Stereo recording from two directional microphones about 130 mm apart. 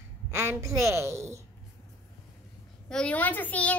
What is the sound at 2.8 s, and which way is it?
Speech, 5° left (ahead or behind).